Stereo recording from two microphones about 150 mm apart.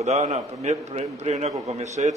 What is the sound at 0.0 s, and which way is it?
A man's voice, 50° right (ahead or behind).